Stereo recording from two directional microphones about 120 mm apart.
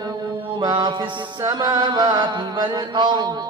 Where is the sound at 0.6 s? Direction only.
35° right (ahead or behind).